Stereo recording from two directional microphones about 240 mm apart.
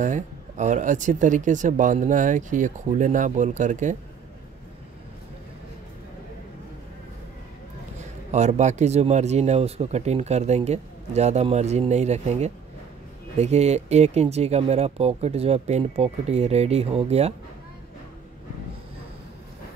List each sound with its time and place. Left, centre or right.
0.0 s speech: right
8.3 s speech: right